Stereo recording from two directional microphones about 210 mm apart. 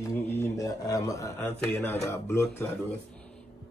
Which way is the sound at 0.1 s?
15° left (ahead or behind).